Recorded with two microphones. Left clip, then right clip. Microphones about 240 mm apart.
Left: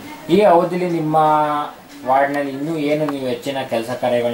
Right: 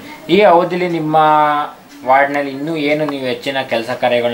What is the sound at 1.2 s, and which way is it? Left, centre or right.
Speech, centre.